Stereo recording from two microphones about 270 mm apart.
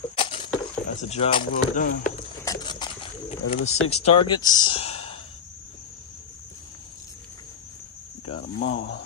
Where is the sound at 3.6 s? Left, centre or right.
Left.